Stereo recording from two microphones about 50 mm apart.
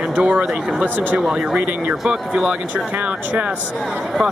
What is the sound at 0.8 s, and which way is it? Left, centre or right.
Speech, right.